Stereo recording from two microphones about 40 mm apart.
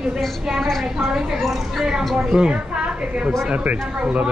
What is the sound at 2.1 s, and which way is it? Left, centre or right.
A woman's voice, right.